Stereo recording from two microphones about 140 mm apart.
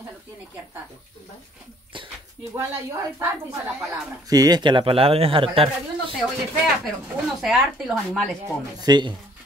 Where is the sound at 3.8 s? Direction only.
25° right (ahead or behind); by 6.1 s 40° right (ahead or behind).